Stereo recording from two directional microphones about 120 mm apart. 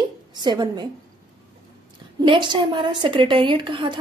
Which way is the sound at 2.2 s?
40° right (ahead or behind).